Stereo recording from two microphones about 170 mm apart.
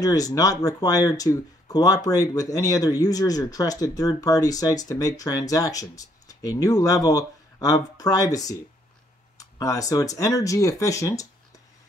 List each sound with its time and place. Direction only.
0.0 s speech: 20° left (ahead or behind)